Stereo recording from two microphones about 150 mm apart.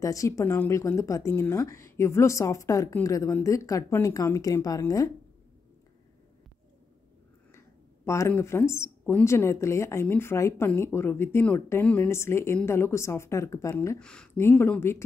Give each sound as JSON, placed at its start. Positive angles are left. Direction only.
{"t": 0.0, "sound": "a woman's voice", "side_deg": 20}
{"t": 7.5, "sound": "speech", "side_deg": 20}
{"t": 13.9, "sound": "speech", "side_deg": 5}